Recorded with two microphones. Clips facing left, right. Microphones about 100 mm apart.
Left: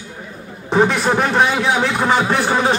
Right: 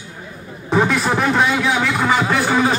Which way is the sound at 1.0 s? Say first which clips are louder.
Left 1 dB; 20° left (ahead or behind).